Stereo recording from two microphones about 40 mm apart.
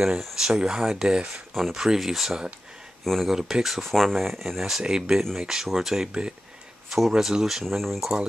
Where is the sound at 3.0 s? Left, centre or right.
Centre.